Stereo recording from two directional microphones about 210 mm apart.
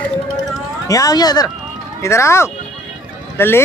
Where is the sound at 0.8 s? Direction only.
15° left (ahead or behind).